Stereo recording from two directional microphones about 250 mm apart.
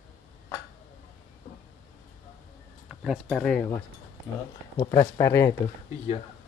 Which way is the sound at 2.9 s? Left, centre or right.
Centre.